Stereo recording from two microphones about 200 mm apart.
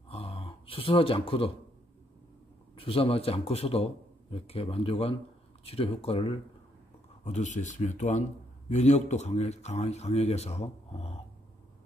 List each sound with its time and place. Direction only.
0.1 s gasp: 30° left (ahead or behind)
2.7 s a man's voice: 25° left (ahead or behind)